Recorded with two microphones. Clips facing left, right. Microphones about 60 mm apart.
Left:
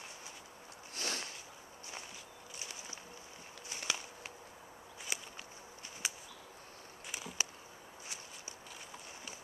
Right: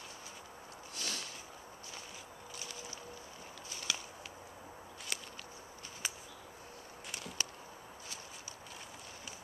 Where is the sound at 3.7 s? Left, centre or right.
Left.